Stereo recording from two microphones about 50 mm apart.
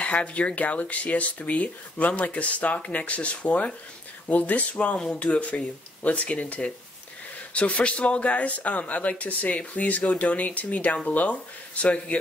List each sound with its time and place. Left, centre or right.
0.0 s speech: left
5.0 s speech: centre